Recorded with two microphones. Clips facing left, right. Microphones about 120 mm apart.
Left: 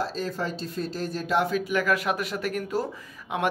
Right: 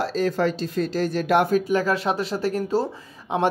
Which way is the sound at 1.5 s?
30° right (ahead or behind).